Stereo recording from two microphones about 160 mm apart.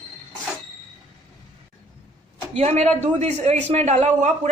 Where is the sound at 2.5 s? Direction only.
45° right (ahead or behind).